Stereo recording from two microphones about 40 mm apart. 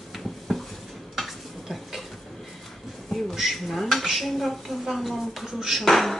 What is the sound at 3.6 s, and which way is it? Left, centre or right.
Speech, centre.